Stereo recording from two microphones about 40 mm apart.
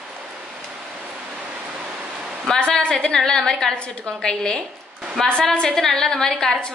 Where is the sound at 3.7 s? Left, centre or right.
Left.